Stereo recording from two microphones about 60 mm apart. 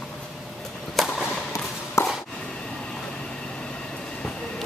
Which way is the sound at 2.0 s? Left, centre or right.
Left.